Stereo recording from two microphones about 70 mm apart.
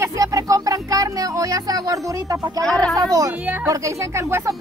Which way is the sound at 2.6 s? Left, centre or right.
Centre.